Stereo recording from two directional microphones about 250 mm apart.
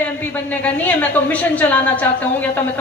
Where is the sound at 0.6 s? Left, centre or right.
Centre.